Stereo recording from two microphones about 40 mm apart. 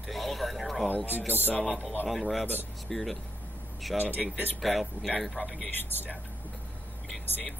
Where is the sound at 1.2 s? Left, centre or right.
Right.